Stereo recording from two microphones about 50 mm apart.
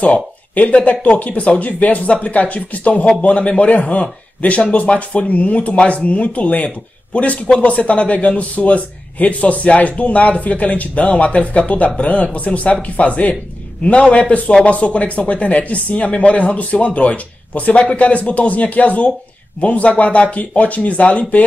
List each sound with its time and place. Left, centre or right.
0.0 s speech: left